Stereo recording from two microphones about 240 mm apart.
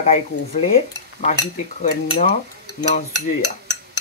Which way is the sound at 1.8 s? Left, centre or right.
Left.